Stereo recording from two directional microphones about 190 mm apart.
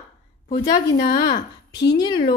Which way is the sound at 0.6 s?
50° left (ahead or behind).